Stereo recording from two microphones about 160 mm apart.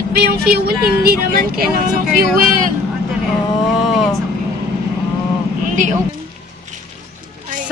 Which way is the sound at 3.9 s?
Centre (ahead or behind).